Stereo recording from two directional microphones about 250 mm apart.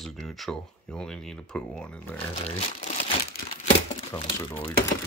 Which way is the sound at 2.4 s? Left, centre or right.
Left.